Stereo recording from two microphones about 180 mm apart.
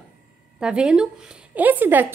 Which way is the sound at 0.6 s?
5° right (ahead or behind).